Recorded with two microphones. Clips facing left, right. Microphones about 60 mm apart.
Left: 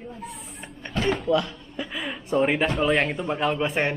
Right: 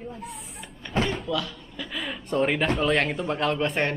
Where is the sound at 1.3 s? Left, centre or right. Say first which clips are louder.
Left 6 dB; left.